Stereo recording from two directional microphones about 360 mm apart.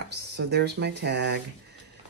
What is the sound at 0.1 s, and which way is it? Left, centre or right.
Speech, right.